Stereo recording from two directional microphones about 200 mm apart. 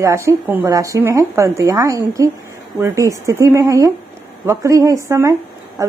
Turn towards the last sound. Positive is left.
turn(degrees=-15)  # may be behind; listen again after turning